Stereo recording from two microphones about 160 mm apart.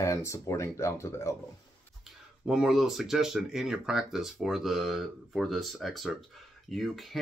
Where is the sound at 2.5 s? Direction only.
5° right (ahead or behind).